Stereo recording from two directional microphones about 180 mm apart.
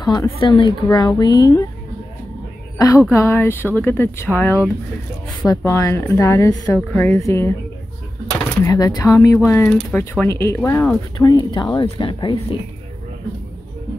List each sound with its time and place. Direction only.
0.0 s a woman's voice: 20° left (ahead or behind)
2.8 s speech: 15° left (ahead or behind)
4.3 s speech: 5° right (ahead or behind)
5.5 s speech: 15° left (ahead or behind)
8.6 s speech: 20° left (ahead or behind)
11.1 s a woman's voice: 20° left (ahead or behind)